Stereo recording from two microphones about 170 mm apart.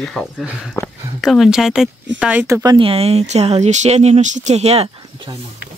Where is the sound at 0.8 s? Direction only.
15° left (ahead or behind).